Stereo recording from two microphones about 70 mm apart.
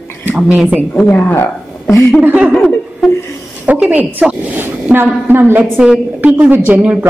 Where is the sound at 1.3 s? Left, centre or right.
Left.